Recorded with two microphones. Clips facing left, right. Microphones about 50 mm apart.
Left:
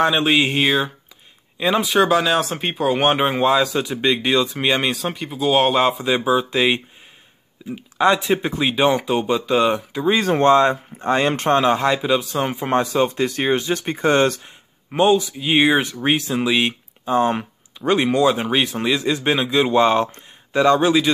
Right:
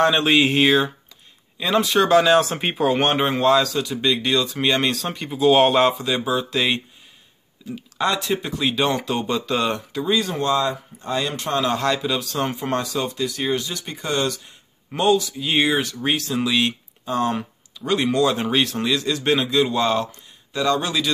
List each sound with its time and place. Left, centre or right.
0.0 s speech: centre
5.9 s speech: centre
10.0 s speech: left
11.6 s speech: left
14.9 s speech: left
20.1 s a sound: left
20.6 s speech: left